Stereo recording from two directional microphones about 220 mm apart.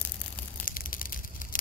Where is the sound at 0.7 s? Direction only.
40° left (ahead or behind).